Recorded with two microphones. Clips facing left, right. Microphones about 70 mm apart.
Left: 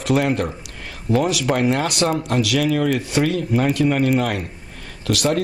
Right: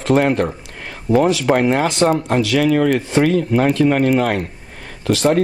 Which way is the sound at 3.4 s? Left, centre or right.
Right.